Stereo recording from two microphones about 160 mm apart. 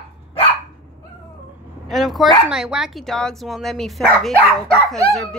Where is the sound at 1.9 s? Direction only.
Centre (ahead or behind).